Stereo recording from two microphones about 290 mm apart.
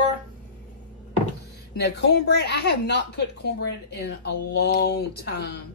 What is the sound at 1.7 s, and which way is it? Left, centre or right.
A woman's voice, left.